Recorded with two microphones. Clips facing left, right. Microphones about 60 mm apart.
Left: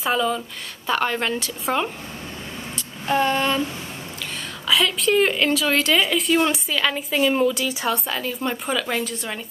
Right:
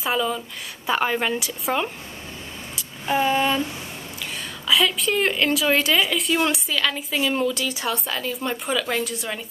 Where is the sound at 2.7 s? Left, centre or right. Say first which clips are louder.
Left 1 dB; centre.